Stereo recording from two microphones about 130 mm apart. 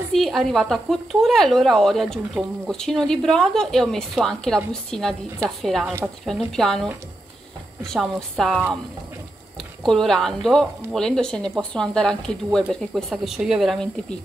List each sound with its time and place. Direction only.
0.1 s speech: centre (ahead or behind)
5.6 s speech: centre (ahead or behind)
9.8 s speech: 5° left (ahead or behind)